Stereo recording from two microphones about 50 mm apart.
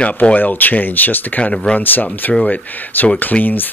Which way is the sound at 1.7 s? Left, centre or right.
Left.